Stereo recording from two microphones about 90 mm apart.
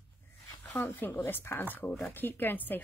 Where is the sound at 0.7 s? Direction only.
25° left (ahead or behind).